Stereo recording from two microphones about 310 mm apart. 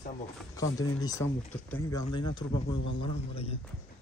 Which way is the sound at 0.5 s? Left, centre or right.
Centre.